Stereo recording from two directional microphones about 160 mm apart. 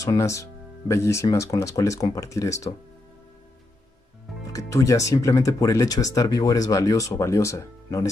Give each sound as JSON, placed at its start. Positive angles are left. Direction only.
{"t": 0.0, "sound": "speech", "side_deg": 20}
{"t": 4.5, "sound": "speech", "side_deg": 20}